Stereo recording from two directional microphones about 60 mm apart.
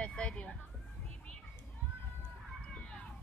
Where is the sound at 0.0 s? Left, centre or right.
Centre.